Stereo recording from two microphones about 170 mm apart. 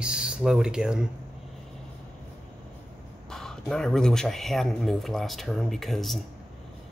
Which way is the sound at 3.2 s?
5° left (ahead or behind).